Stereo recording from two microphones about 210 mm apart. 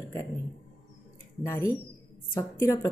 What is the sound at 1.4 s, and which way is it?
A woman's voice, 15° left (ahead or behind).